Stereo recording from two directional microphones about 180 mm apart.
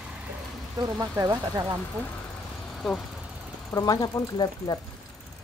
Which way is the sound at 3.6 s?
20° left (ahead or behind).